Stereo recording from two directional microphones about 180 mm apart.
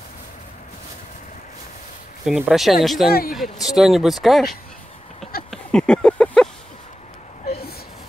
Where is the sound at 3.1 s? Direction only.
55° left (ahead or behind).